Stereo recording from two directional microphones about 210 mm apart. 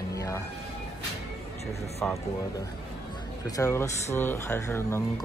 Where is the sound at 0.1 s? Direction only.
15° left (ahead or behind).